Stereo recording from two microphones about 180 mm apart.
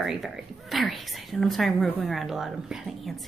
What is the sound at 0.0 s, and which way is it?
A woman's voice, centre (ahead or behind).